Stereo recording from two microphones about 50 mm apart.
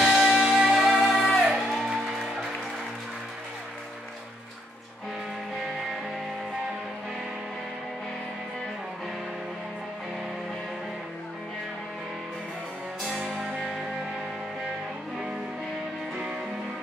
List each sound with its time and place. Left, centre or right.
0.0 s music: centre
13.2 s music: centre